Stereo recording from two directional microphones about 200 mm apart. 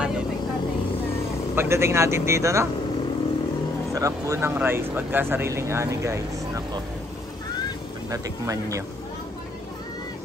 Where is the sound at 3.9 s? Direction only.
15° right (ahead or behind).